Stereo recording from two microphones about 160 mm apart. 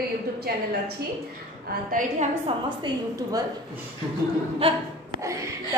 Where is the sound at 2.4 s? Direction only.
30° right (ahead or behind).